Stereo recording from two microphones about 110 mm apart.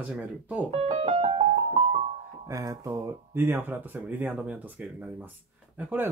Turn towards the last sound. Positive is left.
turn(degrees=-15)  # may be behind; listen again after turning